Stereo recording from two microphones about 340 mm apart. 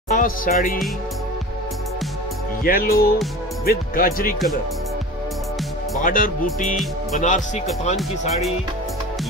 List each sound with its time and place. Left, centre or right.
0.1 s music: left
2.6 s speech: left
5.9 s speech: left
8.0 s speech: centre